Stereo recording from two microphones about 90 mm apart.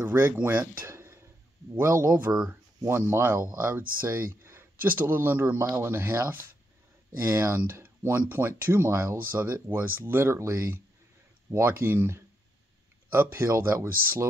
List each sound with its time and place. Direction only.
0.0 s speech: 20° right (ahead or behind)